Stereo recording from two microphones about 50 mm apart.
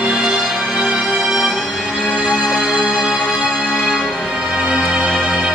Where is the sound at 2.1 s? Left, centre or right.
Centre.